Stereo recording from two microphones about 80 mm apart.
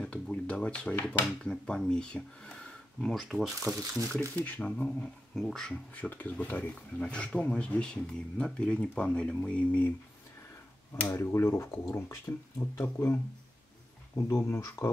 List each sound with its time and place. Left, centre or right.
0.0 s speech: centre
4.5 s speech: centre
5.9 s speech: left
11.1 s speech: left